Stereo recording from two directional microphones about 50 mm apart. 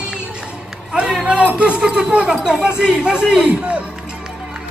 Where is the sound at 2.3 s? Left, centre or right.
Centre.